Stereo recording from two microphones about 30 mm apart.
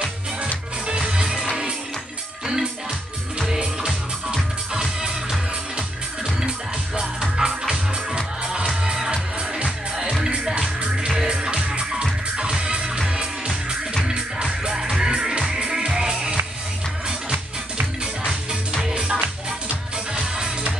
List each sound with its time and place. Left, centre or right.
0.9 s music: right
3.3 s music: right
7.0 s music: right
11.2 s music: right
14.8 s music: centre
18.9 s music: right